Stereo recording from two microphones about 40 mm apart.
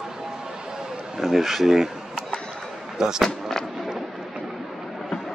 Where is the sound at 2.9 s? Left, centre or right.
Centre.